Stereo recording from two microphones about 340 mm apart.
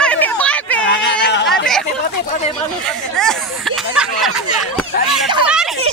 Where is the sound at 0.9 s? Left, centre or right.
Left.